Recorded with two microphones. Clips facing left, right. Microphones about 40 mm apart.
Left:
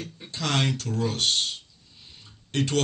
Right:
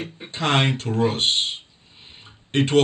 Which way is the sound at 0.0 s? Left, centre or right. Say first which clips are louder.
Right 6 dB; right.